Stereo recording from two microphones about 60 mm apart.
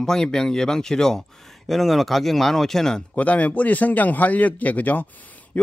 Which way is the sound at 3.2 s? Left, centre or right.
Left.